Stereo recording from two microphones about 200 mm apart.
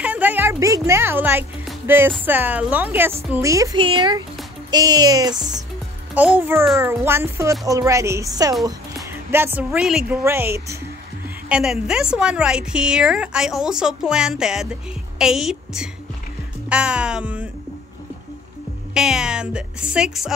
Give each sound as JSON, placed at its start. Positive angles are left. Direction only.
{"t": 0.0, "sound": "music", "side_deg": -5}
{"t": 2.2, "sound": "a woman's voice", "side_deg": -10}
{"t": 6.1, "sound": "a woman's voice", "side_deg": -10}
{"t": 8.6, "sound": "music", "side_deg": -15}
{"t": 9.7, "sound": "a woman's voice", "side_deg": 0}
{"t": 16.6, "sound": "music", "side_deg": -5}
{"t": 18.9, "sound": "a woman's voice", "side_deg": -5}